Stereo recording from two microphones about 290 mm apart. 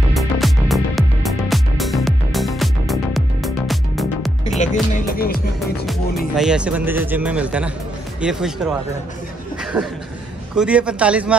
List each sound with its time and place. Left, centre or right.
0.1 s music: centre
4.9 s music: left
5.9 s speech: centre
9.6 s chuckle: centre
10.5 s speech: centre